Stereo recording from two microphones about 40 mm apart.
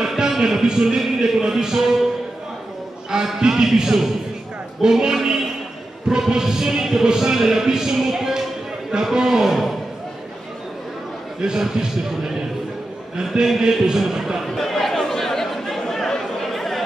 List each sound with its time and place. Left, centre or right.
0.0 s music: centre
0.4 s speech: centre
3.1 s speech: centre
11.4 s speech: centre
14.4 s chatter: centre